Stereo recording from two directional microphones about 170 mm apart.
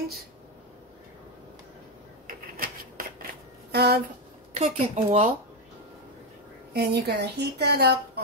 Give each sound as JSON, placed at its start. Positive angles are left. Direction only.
{"t": 2.2, "sound": "a sound", "side_deg": -55}
{"t": 3.7, "sound": "a woman's voice", "side_deg": -70}
{"t": 4.6, "sound": "a woman's voice", "side_deg": -40}
{"t": 6.7, "sound": "a woman's voice", "side_deg": -70}